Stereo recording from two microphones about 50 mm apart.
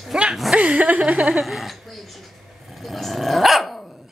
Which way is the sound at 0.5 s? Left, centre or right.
Right.